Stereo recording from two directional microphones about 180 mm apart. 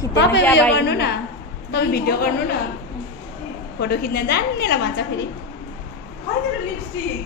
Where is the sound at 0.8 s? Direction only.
70° left (ahead or behind).